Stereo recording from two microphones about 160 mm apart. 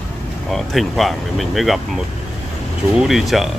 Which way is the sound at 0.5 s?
Centre (ahead or behind).